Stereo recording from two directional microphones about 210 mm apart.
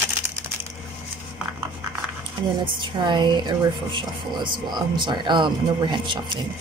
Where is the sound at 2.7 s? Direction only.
20° right (ahead or behind).